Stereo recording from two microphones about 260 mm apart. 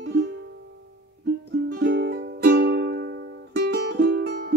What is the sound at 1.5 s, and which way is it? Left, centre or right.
Music, right.